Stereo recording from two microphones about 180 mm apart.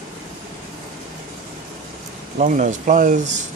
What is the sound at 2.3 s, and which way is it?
Speech, 45° right (ahead or behind).